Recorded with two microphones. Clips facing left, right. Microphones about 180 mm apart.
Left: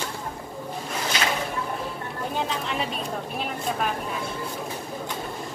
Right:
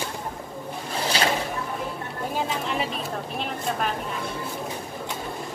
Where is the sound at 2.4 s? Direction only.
Centre (ahead or behind).